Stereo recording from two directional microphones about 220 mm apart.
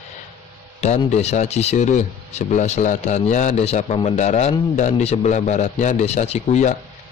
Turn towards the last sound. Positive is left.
turn(degrees=30)  # may be behind; listen again after turning